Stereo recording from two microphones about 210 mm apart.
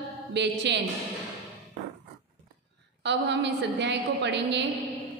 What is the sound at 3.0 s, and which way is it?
A woman's voice, 55° right (ahead or behind).